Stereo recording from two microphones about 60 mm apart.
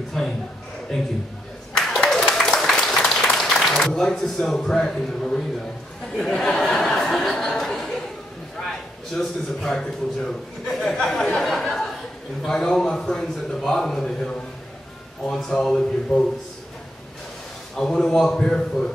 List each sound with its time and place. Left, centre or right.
0.2 s a man's voice: centre
1.7 s applause: centre
6.1 s a sound: centre
9.1 s a man's voice: centre
15.3 s a man's voice: centre
17.7 s a man's voice: centre